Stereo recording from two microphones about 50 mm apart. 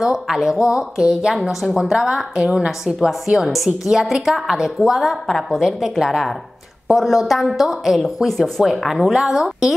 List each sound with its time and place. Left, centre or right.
0.0 s a woman's voice: centre
3.3 s a woman's voice: centre
5.8 s a woman's voice: centre